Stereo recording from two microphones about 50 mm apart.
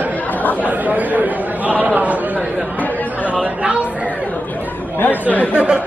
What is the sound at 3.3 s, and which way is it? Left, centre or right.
Chatter, right.